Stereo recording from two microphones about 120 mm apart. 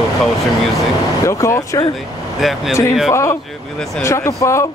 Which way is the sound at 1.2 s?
25° left (ahead or behind).